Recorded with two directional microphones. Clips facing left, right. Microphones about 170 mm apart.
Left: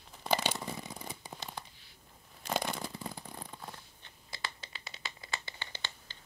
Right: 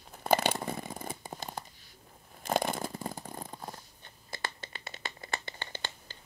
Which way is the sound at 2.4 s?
50° right (ahead or behind).